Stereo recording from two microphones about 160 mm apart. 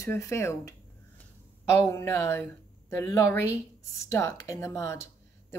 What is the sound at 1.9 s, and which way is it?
Speech, 15° left (ahead or behind).